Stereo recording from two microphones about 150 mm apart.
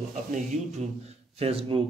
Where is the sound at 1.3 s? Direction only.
40° right (ahead or behind).